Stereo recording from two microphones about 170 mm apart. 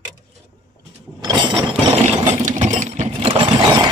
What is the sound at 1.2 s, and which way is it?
Ratchet, 25° right (ahead or behind).